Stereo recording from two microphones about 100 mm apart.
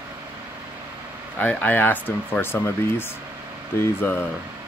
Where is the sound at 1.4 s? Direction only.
20° left (ahead or behind).